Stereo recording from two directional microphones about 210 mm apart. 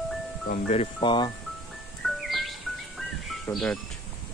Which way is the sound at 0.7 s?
25° left (ahead or behind).